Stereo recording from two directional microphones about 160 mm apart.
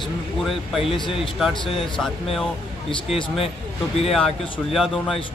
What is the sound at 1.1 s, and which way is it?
Speech, centre (ahead or behind).